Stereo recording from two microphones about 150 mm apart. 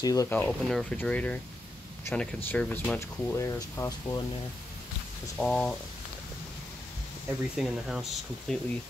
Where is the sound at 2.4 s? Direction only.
10° left (ahead or behind).